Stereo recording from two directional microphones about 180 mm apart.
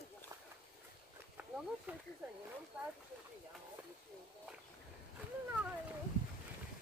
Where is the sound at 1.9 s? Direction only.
10° right (ahead or behind).